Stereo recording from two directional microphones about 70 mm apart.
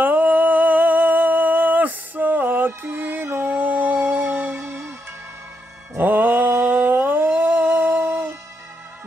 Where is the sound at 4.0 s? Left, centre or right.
Right.